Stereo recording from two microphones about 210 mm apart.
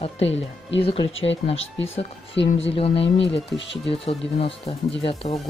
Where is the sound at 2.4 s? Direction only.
60° left (ahead or behind).